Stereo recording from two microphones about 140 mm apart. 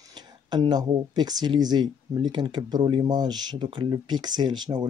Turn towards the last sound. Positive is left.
turn(degrees=-30)  # may be behind; listen again after turning